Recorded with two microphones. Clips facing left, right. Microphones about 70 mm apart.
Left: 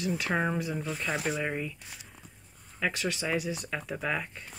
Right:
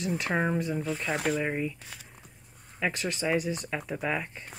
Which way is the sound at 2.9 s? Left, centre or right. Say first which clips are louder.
Right 2 dB; centre.